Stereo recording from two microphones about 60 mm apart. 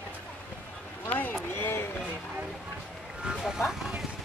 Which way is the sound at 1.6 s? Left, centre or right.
Left.